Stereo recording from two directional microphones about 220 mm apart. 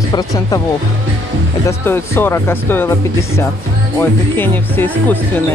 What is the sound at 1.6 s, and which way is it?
Speech, 10° left (ahead or behind).